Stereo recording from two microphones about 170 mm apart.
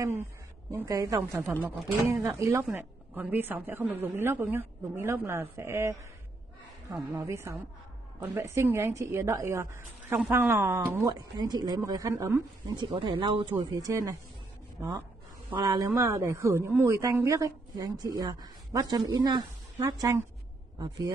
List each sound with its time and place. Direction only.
0.7 s a woman's voice: 20° right (ahead or behind)